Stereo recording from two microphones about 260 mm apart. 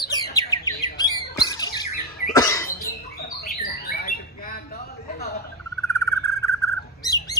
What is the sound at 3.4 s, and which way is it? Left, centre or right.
Squawk, left.